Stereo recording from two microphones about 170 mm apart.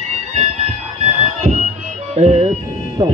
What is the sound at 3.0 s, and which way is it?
Music, 25° right (ahead or behind).